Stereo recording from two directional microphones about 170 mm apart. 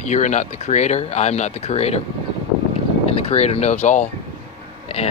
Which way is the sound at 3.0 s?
35° left (ahead or behind).